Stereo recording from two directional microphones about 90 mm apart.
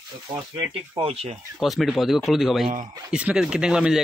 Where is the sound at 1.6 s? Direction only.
Centre (ahead or behind).